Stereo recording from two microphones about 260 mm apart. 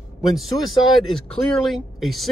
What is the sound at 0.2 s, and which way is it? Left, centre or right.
Speech, centre.